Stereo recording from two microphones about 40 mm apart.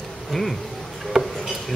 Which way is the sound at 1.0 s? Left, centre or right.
Centre.